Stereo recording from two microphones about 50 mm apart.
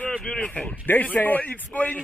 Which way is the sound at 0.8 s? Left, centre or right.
Left.